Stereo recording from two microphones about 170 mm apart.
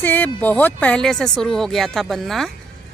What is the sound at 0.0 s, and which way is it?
Speech, 10° left (ahead or behind).